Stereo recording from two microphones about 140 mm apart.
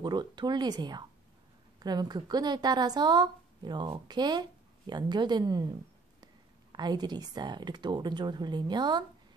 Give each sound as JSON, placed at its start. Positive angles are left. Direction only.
{"t": 0.0, "sound": "a woman's voice", "side_deg": -30}